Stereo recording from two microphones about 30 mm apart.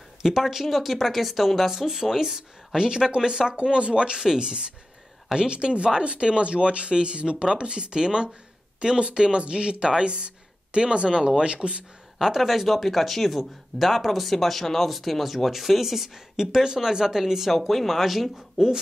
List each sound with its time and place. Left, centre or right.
0.4 s speech: centre
1.7 s a woman's voice: centre
11.5 s a woman's voice: right
12.4 s speech: centre
17.5 s speech: centre